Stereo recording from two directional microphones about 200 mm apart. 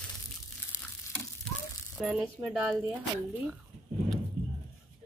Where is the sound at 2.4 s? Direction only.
20° right (ahead or behind).